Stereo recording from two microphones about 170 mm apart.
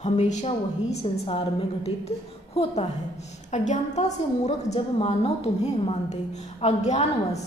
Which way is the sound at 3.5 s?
45° left (ahead or behind).